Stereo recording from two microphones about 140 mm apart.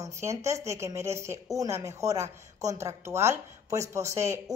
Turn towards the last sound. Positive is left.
turn(degrees=-20)  # may be behind; listen again after turning